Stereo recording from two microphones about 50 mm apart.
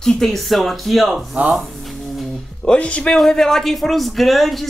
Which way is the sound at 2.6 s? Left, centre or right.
Left.